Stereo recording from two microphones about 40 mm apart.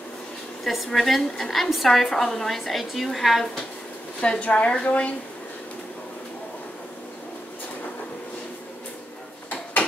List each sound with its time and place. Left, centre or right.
0.7 s a woman's voice: centre
4.2 s a woman's voice: left